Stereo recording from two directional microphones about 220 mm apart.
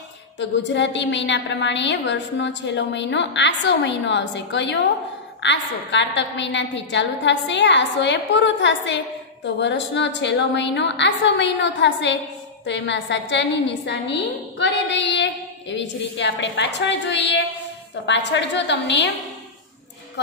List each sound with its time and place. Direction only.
0.4 s a woman's voice: 55° left (ahead or behind)